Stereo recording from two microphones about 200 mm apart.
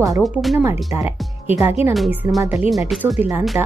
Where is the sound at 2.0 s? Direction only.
Centre (ahead or behind).